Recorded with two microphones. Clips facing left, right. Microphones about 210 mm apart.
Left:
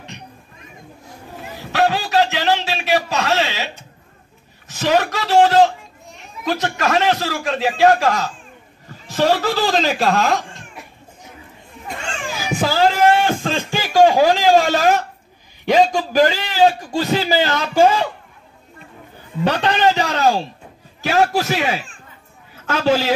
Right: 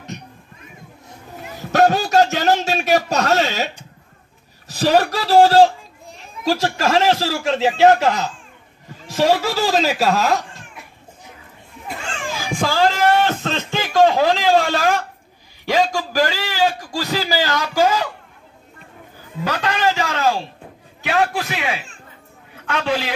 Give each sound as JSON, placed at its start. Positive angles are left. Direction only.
{"t": 1.7, "sound": "a sound", "side_deg": -45}
{"t": 4.6, "sound": "a man's voice", "side_deg": -35}
{"t": 9.0, "sound": "speech", "side_deg": -10}
{"t": 12.4, "sound": "a sound", "side_deg": 5}
{"t": 15.6, "sound": "a man's voice", "side_deg": 20}
{"t": 19.4, "sound": "a man's voice", "side_deg": 30}